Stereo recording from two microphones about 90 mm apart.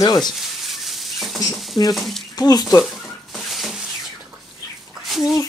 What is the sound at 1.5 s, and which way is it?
Stir, centre (ahead or behind).